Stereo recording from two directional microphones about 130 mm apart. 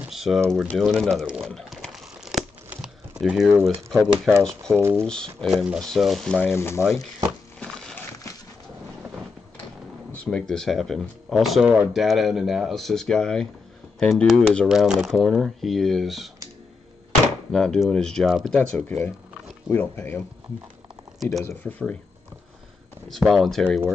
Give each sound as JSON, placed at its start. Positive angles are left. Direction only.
{"t": 0.1, "sound": "a sound", "side_deg": 0}
{"t": 0.7, "sound": "crumpling", "side_deg": 0}
{"t": 2.7, "sound": "typing", "side_deg": -5}
{"t": 3.9, "sound": "speech", "side_deg": 0}
{"t": 4.7, "sound": "speech", "side_deg": -20}
{"t": 5.0, "sound": "speech", "side_deg": 5}
{"t": 6.4, "sound": "speech", "side_deg": 20}
{"t": 7.6, "sound": "a sound", "side_deg": 5}
{"t": 10.1, "sound": "speech", "side_deg": 5}
{"t": 17.5, "sound": "speech", "side_deg": 5}
{"t": 21.2, "sound": "speech", "side_deg": 0}
{"t": 21.5, "sound": "speech", "side_deg": 10}
{"t": 23.0, "sound": "speech", "side_deg": 0}